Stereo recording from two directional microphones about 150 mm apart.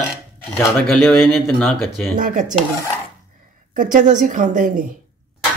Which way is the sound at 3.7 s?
60° right (ahead or behind).